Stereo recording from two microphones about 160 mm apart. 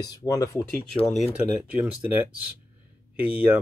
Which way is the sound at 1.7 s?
10° right (ahead or behind).